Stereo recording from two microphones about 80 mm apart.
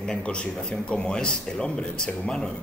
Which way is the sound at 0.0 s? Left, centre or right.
Centre.